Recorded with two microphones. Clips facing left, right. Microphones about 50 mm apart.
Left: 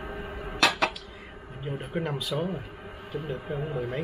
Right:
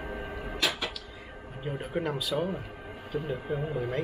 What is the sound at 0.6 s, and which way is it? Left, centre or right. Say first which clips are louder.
Dishes: left 7 dB; left.